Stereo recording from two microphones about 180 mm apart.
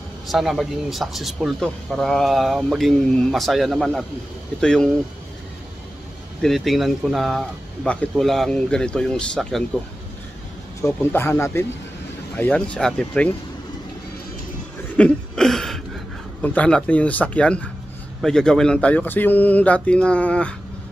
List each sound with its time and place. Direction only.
0.3 s speech: centre (ahead or behind)
6.4 s speech: centre (ahead or behind)
10.9 s speech: 10° left (ahead or behind)
15.0 s a sound: 5° left (ahead or behind)
16.3 s speech: 10° left (ahead or behind)